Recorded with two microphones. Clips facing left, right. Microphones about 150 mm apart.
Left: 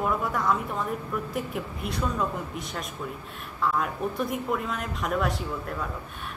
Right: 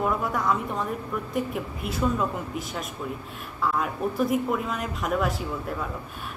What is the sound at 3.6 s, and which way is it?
A woman's voice, centre (ahead or behind).